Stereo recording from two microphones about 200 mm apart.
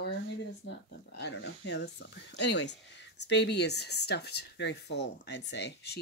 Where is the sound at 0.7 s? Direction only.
60° left (ahead or behind).